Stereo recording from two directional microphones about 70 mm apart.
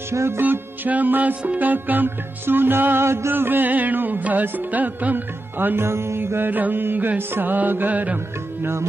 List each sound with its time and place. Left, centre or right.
0.1 s music: right
0.4 s music: right